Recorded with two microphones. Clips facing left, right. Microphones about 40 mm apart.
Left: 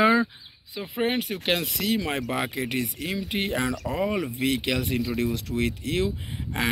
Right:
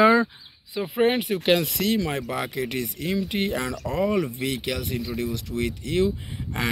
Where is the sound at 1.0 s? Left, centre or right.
Centre.